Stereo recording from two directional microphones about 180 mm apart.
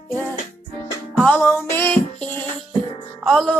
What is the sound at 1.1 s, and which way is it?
Music, 5° left (ahead or behind).